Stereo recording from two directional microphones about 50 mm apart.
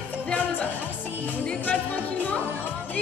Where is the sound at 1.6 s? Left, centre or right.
Left.